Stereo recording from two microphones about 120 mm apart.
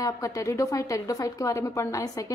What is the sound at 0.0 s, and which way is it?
A woman's voice, 25° left (ahead or behind).